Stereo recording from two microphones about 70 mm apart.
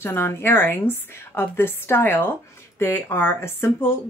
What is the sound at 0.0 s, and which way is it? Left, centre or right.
Speech, left.